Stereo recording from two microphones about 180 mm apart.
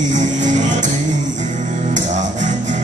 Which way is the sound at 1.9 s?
40° right (ahead or behind).